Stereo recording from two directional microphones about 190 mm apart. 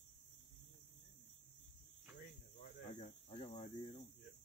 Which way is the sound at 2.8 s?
35° left (ahead or behind).